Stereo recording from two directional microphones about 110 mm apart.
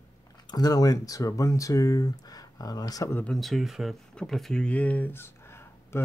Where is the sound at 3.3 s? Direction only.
Centre (ahead or behind); by 6.0 s 20° left (ahead or behind).